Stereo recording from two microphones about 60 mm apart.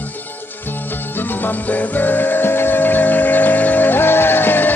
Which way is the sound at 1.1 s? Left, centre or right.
Left.